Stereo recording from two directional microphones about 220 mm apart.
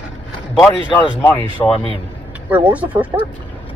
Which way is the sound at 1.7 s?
20° left (ahead or behind).